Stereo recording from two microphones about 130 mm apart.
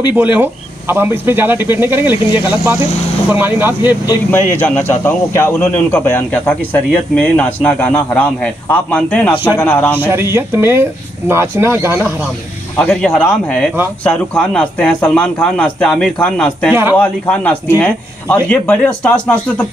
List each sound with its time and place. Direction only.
0.1 s speech: 15° right (ahead or behind)
4.3 s a man's voice: 15° left (ahead or behind)
9.9 s speech: 15° right (ahead or behind)
12.7 s a man's voice: 5° left (ahead or behind)